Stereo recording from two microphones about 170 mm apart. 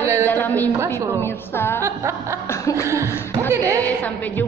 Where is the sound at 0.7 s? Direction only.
15° right (ahead or behind).